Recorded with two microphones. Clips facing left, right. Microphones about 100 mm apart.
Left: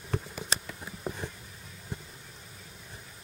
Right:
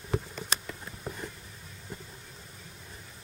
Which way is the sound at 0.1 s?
5° left (ahead or behind).